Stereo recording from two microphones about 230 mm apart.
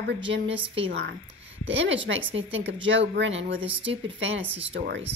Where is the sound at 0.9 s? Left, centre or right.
Right.